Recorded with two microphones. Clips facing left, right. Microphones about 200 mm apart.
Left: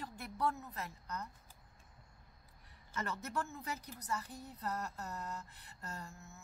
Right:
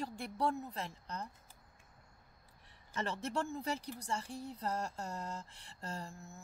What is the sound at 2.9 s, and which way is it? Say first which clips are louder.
Speech: right 3 dB; 30° right (ahead or behind).